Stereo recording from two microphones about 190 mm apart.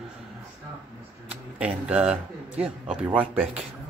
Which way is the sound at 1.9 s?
5° right (ahead or behind).